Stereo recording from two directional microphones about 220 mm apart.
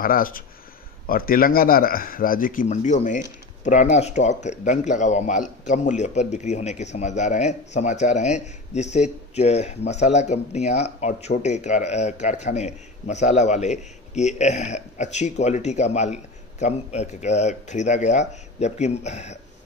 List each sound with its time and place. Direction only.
0.0 s speech: 40° left (ahead or behind)